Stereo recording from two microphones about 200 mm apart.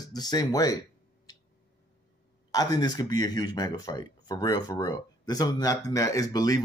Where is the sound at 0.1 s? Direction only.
20° left (ahead or behind).